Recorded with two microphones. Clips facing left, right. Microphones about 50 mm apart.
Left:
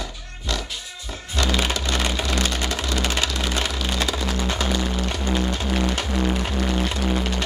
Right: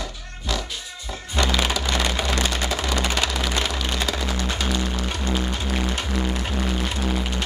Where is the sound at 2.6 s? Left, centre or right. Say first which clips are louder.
Right 1 dB; centre.